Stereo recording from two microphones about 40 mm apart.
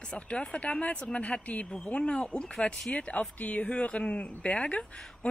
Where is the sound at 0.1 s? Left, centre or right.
Left.